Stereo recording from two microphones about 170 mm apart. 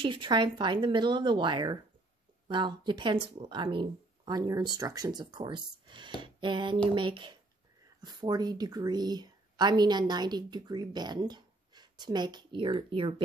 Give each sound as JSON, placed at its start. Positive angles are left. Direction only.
{"t": 0.0, "sound": "a woman's voice", "side_deg": -30}
{"t": 6.2, "sound": "a sound", "side_deg": -30}
{"t": 7.0, "sound": "a woman's voice", "side_deg": -30}